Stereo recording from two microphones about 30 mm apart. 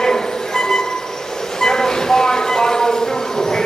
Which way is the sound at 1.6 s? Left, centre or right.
Centre.